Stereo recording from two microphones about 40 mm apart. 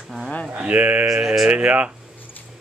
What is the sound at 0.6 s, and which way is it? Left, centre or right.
Speech, right.